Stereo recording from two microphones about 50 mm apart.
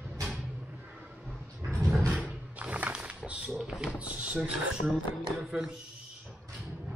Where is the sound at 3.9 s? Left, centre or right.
Right.